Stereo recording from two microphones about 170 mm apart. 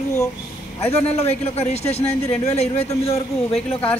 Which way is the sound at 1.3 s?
40° left (ahead or behind).